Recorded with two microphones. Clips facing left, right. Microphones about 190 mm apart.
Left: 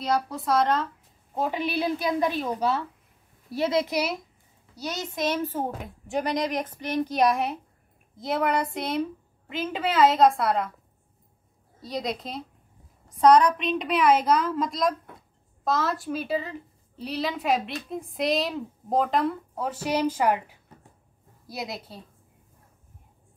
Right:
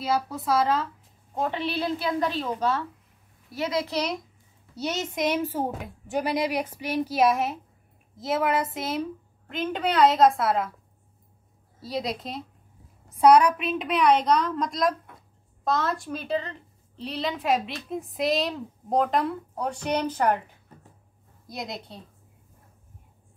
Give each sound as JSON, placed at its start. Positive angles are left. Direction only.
{"t": 0.0, "sound": "a woman's voice", "side_deg": 0}
{"t": 1.3, "sound": "a woman's voice", "side_deg": 10}
{"t": 3.5, "sound": "a woman's voice", "side_deg": 30}
{"t": 3.8, "sound": "a woman's voice", "side_deg": 10}
{"t": 4.9, "sound": "speech", "side_deg": -15}
{"t": 5.8, "sound": "a woman's voice", "side_deg": 0}
{"t": 11.8, "sound": "a woman's voice", "side_deg": 0}